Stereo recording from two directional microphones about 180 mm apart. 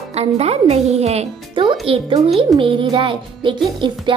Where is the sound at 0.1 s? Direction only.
35° right (ahead or behind).